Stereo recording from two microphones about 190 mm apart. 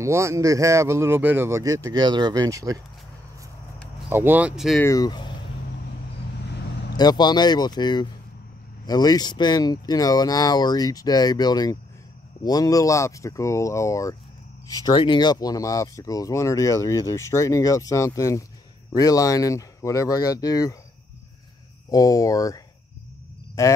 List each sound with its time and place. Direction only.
0.0 s speech: 15° right (ahead or behind)
4.1 s speech: 10° right (ahead or behind)
4.8 s speech: 20° left (ahead or behind)
7.0 s speech: 20° left (ahead or behind)
21.9 s speech: 20° left (ahead or behind)